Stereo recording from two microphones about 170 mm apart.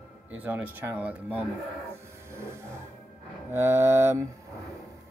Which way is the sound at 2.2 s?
15° right (ahead or behind).